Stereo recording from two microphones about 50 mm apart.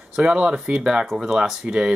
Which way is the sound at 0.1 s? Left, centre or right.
Centre.